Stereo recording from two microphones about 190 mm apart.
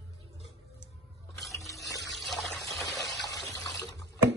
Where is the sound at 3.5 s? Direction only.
20° left (ahead or behind).